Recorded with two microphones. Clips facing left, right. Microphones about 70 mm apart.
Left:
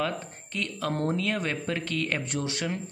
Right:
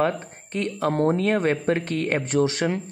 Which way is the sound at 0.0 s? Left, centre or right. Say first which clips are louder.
Right 7 dB; right.